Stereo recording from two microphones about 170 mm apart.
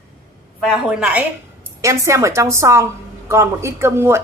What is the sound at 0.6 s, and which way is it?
Speech, centre (ahead or behind).